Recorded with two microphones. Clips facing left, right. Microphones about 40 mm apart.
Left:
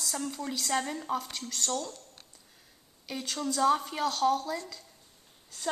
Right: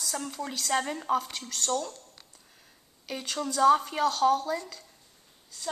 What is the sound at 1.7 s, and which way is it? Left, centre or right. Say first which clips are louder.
Speech: right 5 dB; centre.